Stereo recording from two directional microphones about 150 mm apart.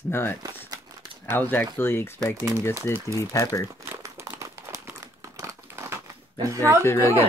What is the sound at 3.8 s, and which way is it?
Crumpling, 20° right (ahead or behind).